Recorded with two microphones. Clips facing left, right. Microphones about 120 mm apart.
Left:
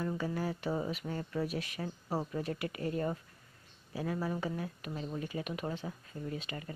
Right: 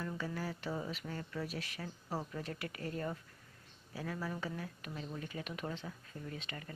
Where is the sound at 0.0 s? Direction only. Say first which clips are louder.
Left 5 dB; 25° left (ahead or behind).